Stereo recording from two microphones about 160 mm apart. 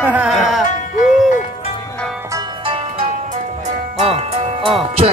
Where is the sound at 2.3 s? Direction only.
35° right (ahead or behind).